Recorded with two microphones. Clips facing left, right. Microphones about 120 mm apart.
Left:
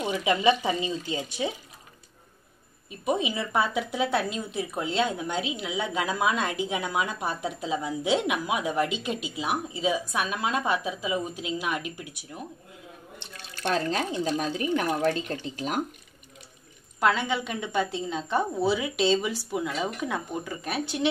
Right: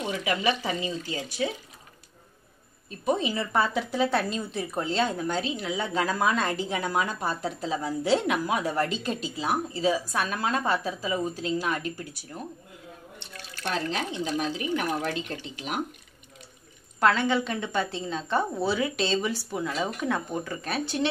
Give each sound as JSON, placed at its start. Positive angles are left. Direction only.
{"t": 0.0, "sound": "speech", "side_deg": 20}
{"t": 2.9, "sound": "a woman's voice", "side_deg": 15}
{"t": 13.7, "sound": "speech", "side_deg": 40}
{"t": 17.0, "sound": "a woman's voice", "side_deg": 10}